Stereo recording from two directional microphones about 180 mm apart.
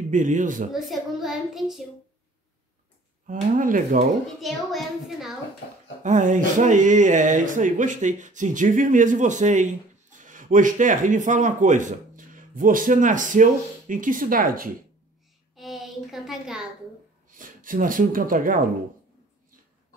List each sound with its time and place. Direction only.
0.1 s speech: 45° right (ahead or behind)
0.7 s a child's voice: centre (ahead or behind)
3.5 s speech: 50° right (ahead or behind)
4.4 s a child's voice: centre (ahead or behind)
6.0 s speech: 45° right (ahead or behind)
15.5 s a sound: centre (ahead or behind)
17.3 s speech: 50° right (ahead or behind)